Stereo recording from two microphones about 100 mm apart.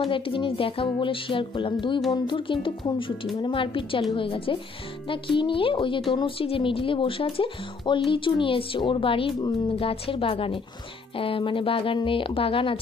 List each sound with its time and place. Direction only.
0.0 s speech: 60° left (ahead or behind)